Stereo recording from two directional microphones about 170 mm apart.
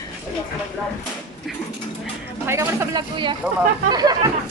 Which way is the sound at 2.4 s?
15° right (ahead or behind).